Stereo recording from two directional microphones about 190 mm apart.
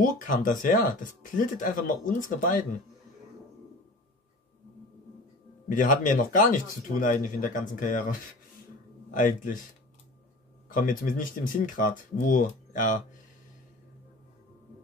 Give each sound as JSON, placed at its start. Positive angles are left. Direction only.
{"t": 0.0, "sound": "speech", "side_deg": 45}
{"t": 5.7, "sound": "speech", "side_deg": 45}
{"t": 9.1, "sound": "speech", "side_deg": 45}
{"t": 10.7, "sound": "speech", "side_deg": 45}